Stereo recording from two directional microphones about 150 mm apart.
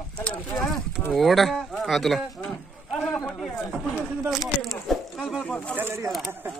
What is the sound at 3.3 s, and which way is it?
Speech, centre (ahead or behind).